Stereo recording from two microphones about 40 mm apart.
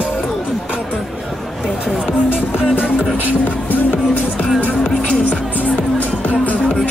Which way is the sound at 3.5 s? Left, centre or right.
Left.